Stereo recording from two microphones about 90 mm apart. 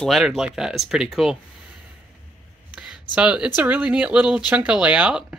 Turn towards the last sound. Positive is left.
turn(degrees=-10)  # may be behind; listen again after turning